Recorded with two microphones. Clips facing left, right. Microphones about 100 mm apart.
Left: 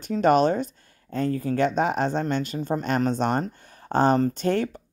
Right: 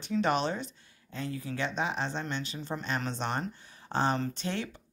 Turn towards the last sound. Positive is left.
turn(degrees=45)  # may be behind; listen again after turning